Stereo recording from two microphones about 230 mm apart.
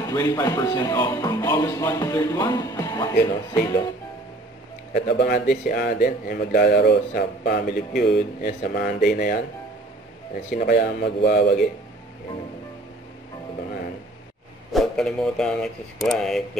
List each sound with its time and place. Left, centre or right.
0.0 s speech: centre
4.9 s speech: left
10.5 s speech: left
14.7 s speech: centre